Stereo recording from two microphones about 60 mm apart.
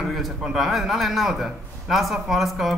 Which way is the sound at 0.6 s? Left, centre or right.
Centre.